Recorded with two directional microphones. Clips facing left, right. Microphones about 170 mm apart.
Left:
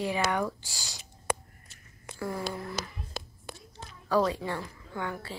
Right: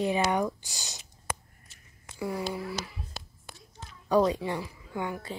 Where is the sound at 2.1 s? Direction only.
10° right (ahead or behind).